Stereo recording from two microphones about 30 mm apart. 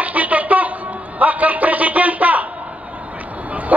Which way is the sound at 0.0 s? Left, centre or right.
Right.